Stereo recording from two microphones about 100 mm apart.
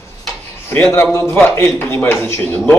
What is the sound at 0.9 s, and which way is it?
A man's voice, 25° left (ahead or behind).